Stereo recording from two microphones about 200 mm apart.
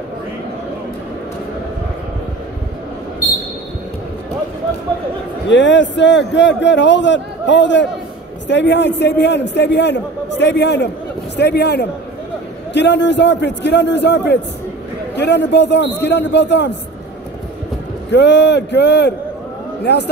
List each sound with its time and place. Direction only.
5.5 s a man's voice: 65° left (ahead or behind)
18.1 s a man's voice: 60° left (ahead or behind)